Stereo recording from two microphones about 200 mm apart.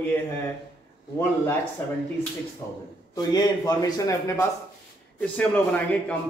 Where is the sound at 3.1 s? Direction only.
20° left (ahead or behind).